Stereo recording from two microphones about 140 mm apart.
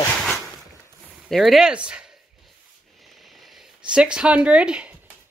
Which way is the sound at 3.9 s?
5° right (ahead or behind).